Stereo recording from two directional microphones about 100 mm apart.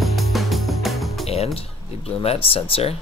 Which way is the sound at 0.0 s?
Centre (ahead or behind).